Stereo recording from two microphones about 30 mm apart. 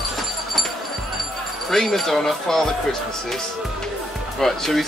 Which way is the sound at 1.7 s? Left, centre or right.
Centre.